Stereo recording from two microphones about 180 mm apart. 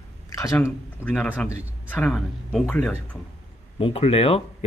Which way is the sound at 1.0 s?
5° left (ahead or behind).